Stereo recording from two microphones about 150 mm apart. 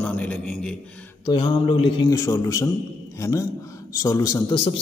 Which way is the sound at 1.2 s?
30° left (ahead or behind).